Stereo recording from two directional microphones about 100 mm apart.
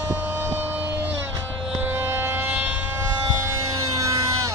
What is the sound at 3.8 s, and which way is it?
Vehicle, 35° right (ahead or behind).